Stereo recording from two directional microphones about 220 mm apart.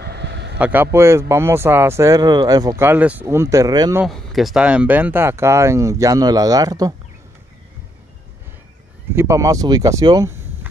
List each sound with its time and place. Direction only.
0.0 s a sound: 50° right (ahead or behind)
0.6 s speech: 5° right (ahead or behind)
4.0 s speech: centre (ahead or behind); by 6.9 s 15° right (ahead or behind)
9.1 s speech: 10° right (ahead or behind)